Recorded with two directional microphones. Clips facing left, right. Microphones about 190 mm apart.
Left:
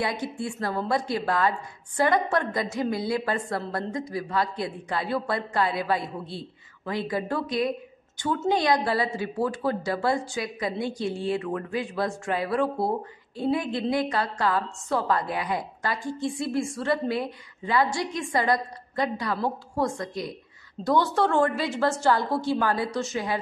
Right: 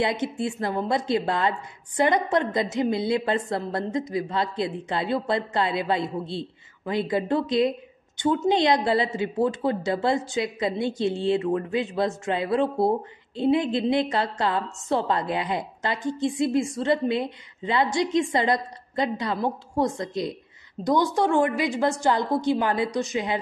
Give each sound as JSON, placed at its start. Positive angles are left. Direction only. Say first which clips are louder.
{"t": 0.0, "sound": "a woman's voice", "louder": "right 4 dB", "side_deg": -20}